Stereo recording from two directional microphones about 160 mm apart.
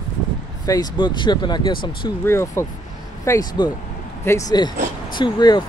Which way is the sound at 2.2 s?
15° left (ahead or behind).